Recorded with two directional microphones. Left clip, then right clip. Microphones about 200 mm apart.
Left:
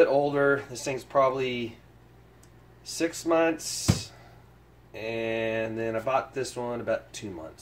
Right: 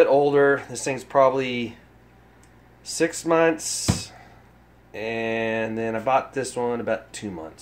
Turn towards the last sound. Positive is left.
turn(degrees=-40)  # may be behind; listen again after turning